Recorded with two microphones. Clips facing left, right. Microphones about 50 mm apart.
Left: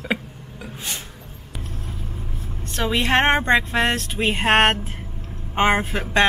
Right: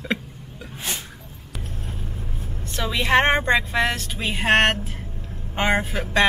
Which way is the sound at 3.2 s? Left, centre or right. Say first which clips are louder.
Left 2 dB; centre.